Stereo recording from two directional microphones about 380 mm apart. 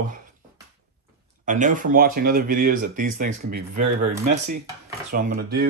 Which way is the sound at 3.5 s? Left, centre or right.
Right.